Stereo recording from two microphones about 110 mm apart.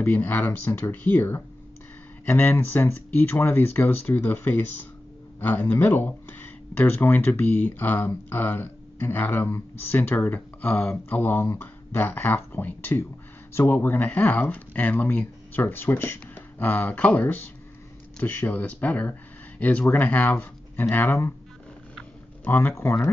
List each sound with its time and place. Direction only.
0.0 s speech: 20° left (ahead or behind)
22.4 s speech: 20° left (ahead or behind)